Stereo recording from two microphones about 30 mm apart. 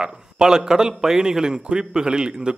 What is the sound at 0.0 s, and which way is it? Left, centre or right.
A man's voice, right.